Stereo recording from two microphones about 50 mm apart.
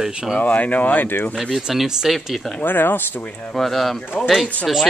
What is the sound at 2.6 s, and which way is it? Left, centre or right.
Speech, left.